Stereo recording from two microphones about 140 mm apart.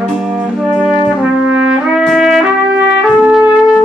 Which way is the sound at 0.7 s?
5° right (ahead or behind).